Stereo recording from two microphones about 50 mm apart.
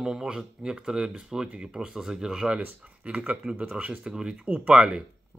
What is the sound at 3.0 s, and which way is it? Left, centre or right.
Speech, right.